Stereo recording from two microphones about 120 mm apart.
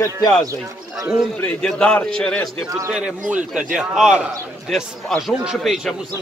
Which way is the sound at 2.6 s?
30° right (ahead or behind).